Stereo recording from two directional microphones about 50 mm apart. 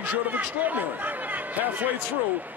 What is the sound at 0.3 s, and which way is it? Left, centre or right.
Speech, right.